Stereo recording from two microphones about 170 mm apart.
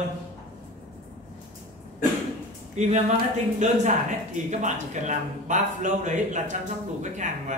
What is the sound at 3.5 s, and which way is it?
Speech, 45° right (ahead or behind).